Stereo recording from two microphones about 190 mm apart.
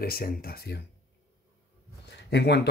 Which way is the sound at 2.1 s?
60° left (ahead or behind).